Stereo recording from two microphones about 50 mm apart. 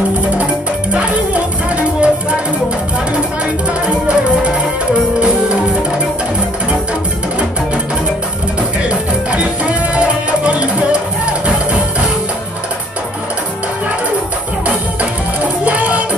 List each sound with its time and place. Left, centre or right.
0.9 s music: right
3.8 s music: right
8.8 s music: right
15.6 s music: right